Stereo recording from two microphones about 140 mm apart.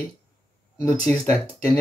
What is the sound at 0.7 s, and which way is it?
Speech, 25° left (ahead or behind).